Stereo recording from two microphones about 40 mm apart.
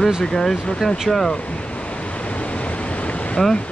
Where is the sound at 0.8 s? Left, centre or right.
Centre.